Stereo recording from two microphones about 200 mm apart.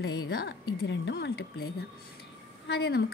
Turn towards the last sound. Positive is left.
turn(degrees=55)  # may be behind; listen again after turning